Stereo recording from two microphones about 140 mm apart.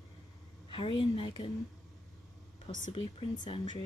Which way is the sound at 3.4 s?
35° left (ahead or behind).